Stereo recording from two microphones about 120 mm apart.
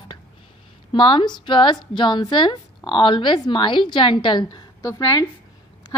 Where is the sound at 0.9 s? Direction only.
45° left (ahead or behind).